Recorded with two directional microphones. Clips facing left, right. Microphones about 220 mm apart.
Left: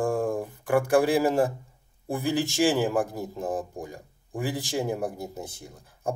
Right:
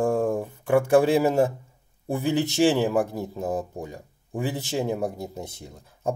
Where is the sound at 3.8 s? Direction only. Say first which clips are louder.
Right 2 dB; 20° right (ahead or behind).